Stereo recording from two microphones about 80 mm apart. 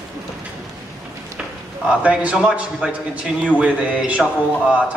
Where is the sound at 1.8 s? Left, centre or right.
Centre.